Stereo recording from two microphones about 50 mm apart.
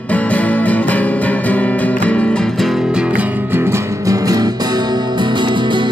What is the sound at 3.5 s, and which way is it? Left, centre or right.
Music, right.